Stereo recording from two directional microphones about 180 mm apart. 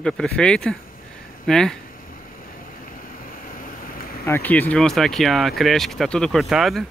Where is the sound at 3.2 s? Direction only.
50° left (ahead or behind).